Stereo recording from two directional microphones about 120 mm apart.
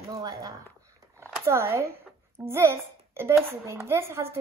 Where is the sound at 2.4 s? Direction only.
20° right (ahead or behind).